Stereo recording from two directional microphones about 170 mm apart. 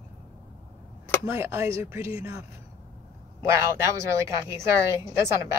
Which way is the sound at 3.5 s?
15° right (ahead or behind).